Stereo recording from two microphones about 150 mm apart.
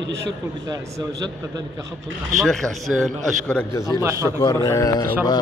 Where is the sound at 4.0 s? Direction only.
20° right (ahead or behind).